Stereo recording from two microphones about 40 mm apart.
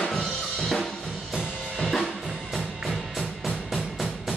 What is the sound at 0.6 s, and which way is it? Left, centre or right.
Drum kit, centre.